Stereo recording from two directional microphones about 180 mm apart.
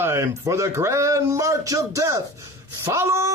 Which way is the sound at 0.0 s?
15° right (ahead or behind).